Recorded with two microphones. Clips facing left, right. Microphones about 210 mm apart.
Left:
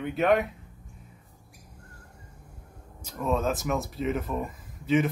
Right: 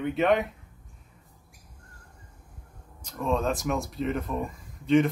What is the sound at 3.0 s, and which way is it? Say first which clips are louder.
Speech: even; 5° left (ahead or behind).